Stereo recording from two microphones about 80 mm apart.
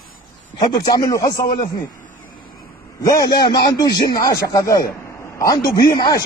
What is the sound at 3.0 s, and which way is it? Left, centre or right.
Speech, left.